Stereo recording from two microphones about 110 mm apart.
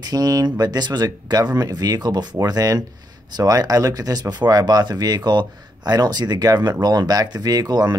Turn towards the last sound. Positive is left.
turn(degrees=-35)  # may be behind; listen again after turning